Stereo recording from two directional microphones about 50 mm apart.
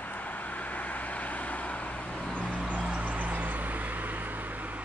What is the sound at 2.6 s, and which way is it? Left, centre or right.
Vehicle, right.